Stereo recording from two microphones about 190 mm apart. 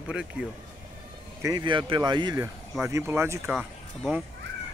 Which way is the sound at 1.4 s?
20° right (ahead or behind).